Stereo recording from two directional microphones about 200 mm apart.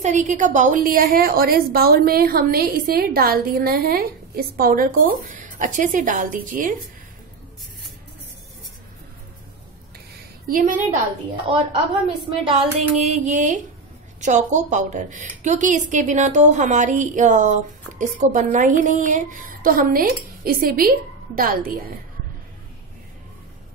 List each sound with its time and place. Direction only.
0.0 s a woman's voice: 35° right (ahead or behind)
10.5 s a woman's voice: 40° right (ahead or behind)
11.4 s a woman's voice: 25° right (ahead or behind)
13.0 s a woman's voice: 35° right (ahead or behind)